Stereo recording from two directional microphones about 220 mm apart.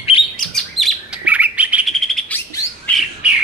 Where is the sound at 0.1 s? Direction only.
25° left (ahead or behind).